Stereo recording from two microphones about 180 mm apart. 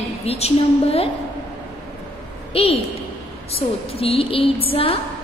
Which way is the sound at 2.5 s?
30° left (ahead or behind).